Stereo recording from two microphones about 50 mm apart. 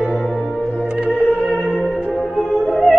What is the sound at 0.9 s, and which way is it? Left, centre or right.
Music, right.